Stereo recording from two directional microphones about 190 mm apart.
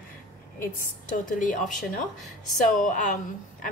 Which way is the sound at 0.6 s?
45° left (ahead or behind).